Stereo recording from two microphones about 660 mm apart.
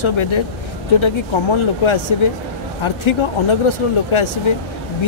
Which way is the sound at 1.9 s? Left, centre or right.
Left.